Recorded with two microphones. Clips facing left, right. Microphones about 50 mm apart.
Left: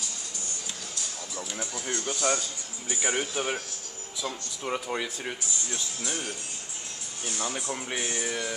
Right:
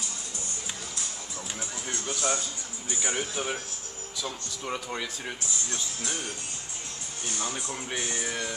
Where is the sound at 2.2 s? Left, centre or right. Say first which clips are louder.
Left 2 dB; left.